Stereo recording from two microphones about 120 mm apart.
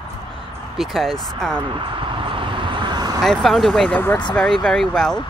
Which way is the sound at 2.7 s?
40° right (ahead or behind).